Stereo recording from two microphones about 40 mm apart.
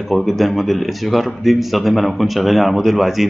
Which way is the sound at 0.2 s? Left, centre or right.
Centre.